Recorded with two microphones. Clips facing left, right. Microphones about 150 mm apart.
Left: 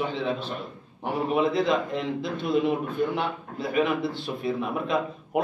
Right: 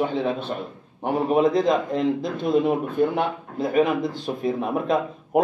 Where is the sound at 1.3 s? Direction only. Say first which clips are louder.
Right 4 dB; 45° right (ahead or behind).